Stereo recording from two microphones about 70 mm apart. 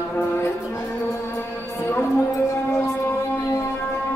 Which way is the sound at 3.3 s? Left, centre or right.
Left.